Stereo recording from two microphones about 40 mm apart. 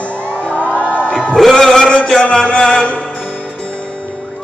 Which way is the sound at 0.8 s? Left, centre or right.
Right.